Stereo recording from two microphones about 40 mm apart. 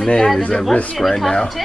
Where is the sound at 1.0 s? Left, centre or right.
Centre.